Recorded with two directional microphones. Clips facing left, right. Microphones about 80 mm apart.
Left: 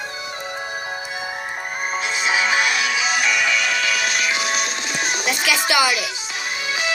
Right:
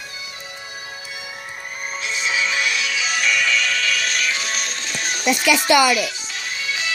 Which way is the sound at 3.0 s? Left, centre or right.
Centre.